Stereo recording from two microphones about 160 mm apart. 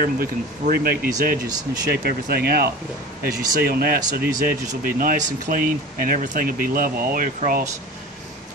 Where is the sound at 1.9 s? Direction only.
75° right (ahead or behind).